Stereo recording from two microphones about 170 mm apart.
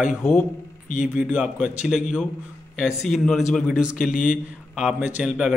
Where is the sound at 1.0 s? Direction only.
10° right (ahead or behind).